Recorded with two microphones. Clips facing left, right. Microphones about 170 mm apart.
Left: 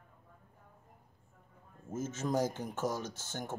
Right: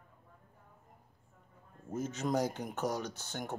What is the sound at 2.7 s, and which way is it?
Speech, 45° left (ahead or behind).